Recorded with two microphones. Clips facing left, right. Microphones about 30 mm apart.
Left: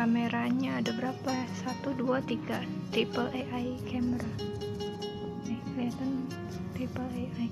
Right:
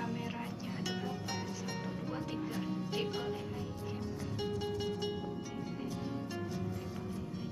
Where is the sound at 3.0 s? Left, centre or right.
Left.